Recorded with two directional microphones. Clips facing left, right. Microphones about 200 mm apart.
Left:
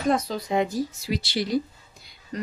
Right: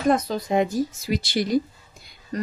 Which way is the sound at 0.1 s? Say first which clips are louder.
Right 2 dB; 50° right (ahead or behind).